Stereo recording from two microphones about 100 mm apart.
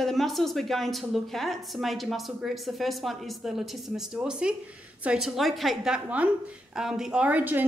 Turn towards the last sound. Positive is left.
turn(degrees=-15)  # may be behind; listen again after turning